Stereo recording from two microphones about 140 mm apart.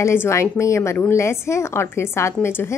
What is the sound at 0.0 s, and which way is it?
A woman's voice, 20° left (ahead or behind).